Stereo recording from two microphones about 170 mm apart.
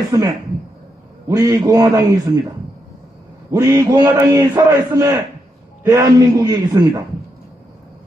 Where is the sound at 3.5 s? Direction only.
20° right (ahead or behind).